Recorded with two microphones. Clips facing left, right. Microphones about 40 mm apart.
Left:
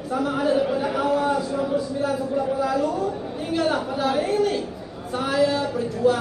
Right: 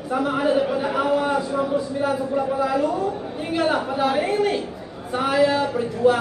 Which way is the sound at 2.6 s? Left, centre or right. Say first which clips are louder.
Right 1 dB; right.